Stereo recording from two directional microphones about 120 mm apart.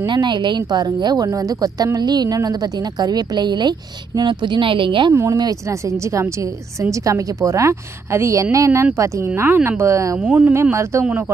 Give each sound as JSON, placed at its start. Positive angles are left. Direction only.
{"t": 0.0, "sound": "speech", "side_deg": -40}
{"t": 5.1, "sound": "a woman's voice", "side_deg": -25}
{"t": 10.1, "sound": "speech", "side_deg": -10}
{"t": 10.5, "sound": "a woman's voice", "side_deg": -20}